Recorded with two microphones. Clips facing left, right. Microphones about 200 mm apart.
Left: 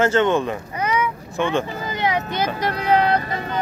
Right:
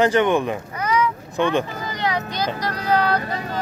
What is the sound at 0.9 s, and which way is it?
Boat, 20° left (ahead or behind).